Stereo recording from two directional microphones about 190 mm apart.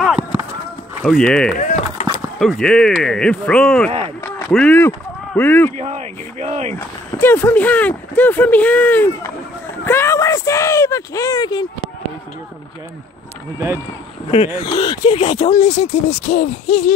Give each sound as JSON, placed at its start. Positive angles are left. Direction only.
{"t": 0.0, "sound": "clip-clop", "side_deg": -5}
{"t": 1.0, "sound": "speech", "side_deg": 5}
{"t": 1.5, "sound": "speech", "side_deg": 50}
{"t": 2.0, "sound": "a sound", "side_deg": -20}
{"t": 2.3, "sound": "speech", "side_deg": 0}
{"t": 5.8, "sound": "speech", "side_deg": -35}
{"t": 6.7, "sound": "speech", "side_deg": 10}
{"t": 14.3, "sound": "speech", "side_deg": 30}